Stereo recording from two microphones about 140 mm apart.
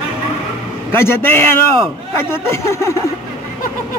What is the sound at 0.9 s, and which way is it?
A man's voice, 15° left (ahead or behind).